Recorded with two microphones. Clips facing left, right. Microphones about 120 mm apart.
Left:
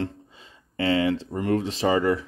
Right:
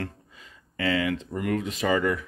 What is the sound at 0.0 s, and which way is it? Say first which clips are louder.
Speech: left 5 dB; 25° left (ahead or behind).